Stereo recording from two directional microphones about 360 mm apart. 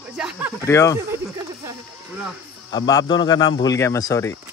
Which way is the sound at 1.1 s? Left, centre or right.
Centre.